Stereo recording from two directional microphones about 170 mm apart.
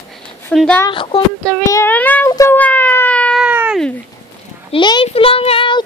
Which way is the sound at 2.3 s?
15° left (ahead or behind).